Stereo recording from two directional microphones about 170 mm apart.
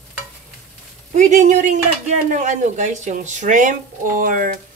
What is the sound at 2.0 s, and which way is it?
A woman's voice, 45° right (ahead or behind).